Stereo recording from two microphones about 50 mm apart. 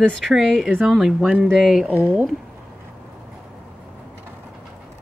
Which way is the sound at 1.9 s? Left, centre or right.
Right.